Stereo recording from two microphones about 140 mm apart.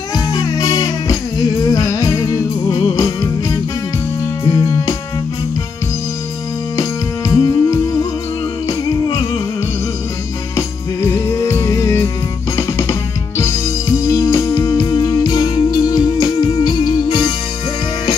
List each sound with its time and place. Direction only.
0.1 s music: 25° left (ahead or behind)
6.8 s music: 20° left (ahead or behind)
10.5 s music: 20° left (ahead or behind)